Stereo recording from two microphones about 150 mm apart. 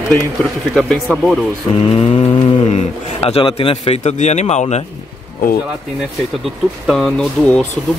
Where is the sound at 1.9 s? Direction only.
40° left (ahead or behind).